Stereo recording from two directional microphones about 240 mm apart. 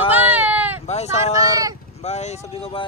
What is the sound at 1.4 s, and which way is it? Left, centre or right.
Speech, centre.